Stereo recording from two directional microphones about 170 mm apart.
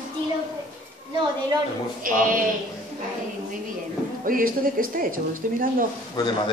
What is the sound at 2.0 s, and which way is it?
Speech, 55° right (ahead or behind).